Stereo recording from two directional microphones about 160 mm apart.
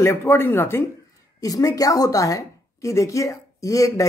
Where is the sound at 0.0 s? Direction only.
15° left (ahead or behind).